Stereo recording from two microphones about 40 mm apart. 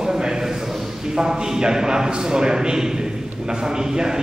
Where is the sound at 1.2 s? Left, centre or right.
Centre.